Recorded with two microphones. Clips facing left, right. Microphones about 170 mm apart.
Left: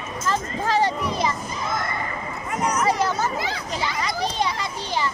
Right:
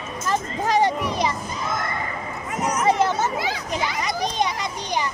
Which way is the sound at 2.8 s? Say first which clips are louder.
Right 4 dB; 20° right (ahead or behind).